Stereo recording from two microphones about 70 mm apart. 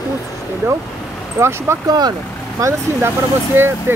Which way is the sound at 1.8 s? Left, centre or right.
Right.